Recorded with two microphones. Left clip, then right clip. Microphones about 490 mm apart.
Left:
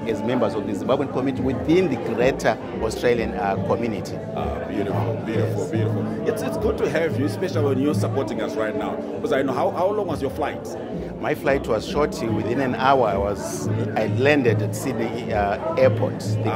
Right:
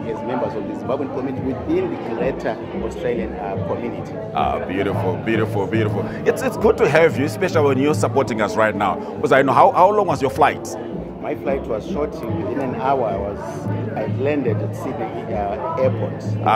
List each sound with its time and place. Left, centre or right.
1.7 s speech: left
5.3 s speech: right
11.2 s speech: left